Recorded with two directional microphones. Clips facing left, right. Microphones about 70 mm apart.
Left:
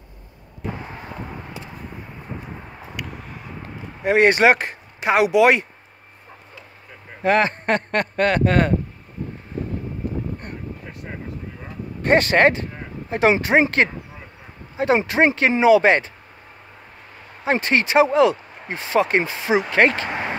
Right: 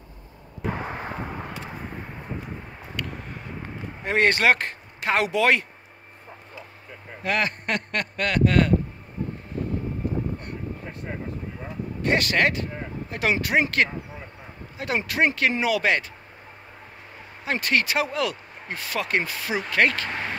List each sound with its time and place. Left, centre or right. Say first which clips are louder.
3.0 s a sound: even; centre
4.0 s speech: left 6 dB; centre
7.2 s a man's voice: left 7 dB; left
12.0 s a man's voice: left 7 dB; left
17.5 s speech: left 4 dB; left